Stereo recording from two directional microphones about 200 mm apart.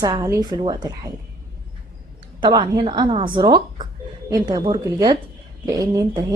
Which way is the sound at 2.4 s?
20° right (ahead or behind).